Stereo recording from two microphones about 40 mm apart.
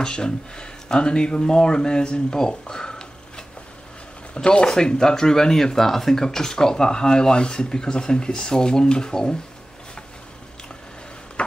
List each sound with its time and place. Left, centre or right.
0.0 s speech: left